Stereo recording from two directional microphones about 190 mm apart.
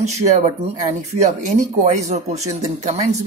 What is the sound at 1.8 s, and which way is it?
Speech, 35° right (ahead or behind).